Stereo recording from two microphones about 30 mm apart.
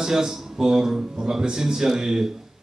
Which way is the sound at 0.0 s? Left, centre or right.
Centre.